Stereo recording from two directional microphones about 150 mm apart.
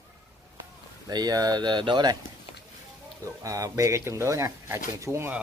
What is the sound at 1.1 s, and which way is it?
Speech, 25° right (ahead or behind).